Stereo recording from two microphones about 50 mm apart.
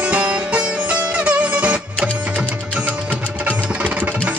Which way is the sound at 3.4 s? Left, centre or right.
Right.